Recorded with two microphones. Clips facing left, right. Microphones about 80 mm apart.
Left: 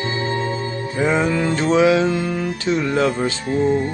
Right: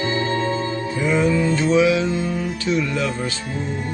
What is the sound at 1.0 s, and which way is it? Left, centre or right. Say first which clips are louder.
Music: left 2 dB; left.